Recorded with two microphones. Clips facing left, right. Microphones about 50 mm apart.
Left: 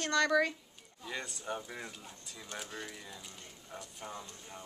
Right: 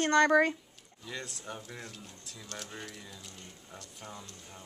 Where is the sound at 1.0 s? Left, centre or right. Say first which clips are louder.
Left 1 dB; centre.